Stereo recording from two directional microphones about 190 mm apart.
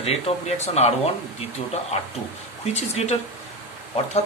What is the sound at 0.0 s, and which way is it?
Speech, 35° left (ahead or behind).